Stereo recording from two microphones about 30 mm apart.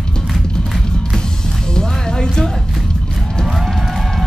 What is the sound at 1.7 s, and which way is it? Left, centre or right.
Music, left.